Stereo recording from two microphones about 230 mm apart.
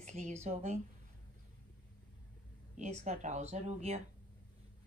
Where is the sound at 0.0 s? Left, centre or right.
Right.